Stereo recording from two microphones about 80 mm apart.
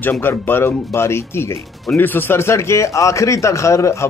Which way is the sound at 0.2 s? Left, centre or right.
Left.